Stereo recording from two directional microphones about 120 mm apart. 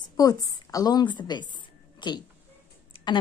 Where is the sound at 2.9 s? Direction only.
50° left (ahead or behind).